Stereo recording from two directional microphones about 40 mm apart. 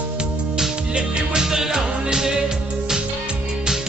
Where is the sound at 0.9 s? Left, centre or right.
Centre.